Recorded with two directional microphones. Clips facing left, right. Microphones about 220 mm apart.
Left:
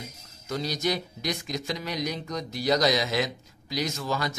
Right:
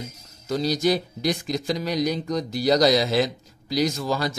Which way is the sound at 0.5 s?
35° right (ahead or behind).